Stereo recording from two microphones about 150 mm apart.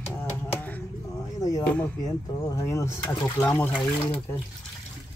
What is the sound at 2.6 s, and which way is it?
Speech, 20° left (ahead or behind).